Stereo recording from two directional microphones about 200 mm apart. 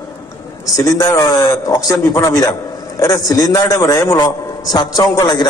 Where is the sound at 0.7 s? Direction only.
15° left (ahead or behind).